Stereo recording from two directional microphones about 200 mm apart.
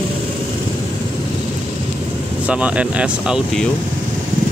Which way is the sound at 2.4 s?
5° right (ahead or behind).